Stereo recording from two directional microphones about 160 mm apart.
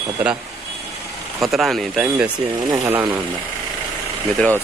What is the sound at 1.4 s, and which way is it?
A man's voice, centre (ahead or behind).